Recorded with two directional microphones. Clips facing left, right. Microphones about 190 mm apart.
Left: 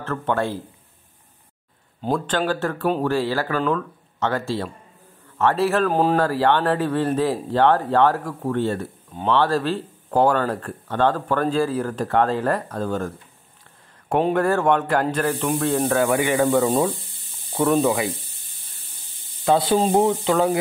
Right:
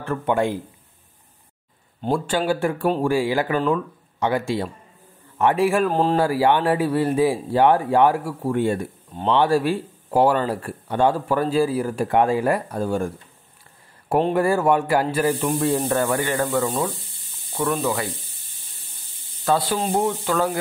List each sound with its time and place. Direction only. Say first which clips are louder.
0.0 s speech: right 2 dB; 10° right (ahead or behind)
2.0 s speech: right 1 dB; 10° right (ahead or behind)
5.9 s speech: left 1 dB; 5° left (ahead or behind)
6.1 s speech: right 1 dB; 10° right (ahead or behind)
14.3 s speech: even; 10° right (ahead or behind); by 16.7 s 15° left (ahead or behind)
19.4 s speech: left 3 dB; 25° left (ahead or behind)